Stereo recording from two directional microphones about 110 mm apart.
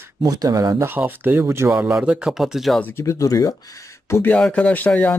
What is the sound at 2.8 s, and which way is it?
Speech, 15° left (ahead or behind).